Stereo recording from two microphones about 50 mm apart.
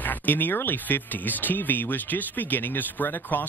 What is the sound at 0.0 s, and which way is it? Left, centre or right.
Speech, left.